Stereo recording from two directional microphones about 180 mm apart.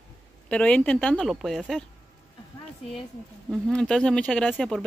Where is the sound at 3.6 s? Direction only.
5° left (ahead or behind).